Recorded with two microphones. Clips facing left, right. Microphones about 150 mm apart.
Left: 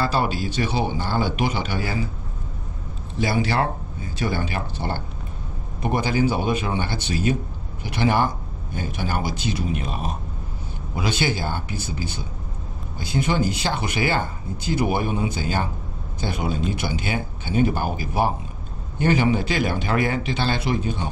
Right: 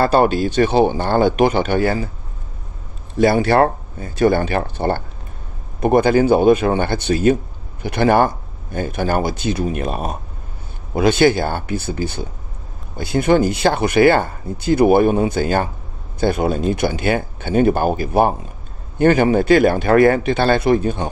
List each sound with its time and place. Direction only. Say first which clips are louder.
0.0 s speech: right 9 dB; 55° right (ahead or behind)
3.2 s speech: right 9 dB; 55° right (ahead or behind)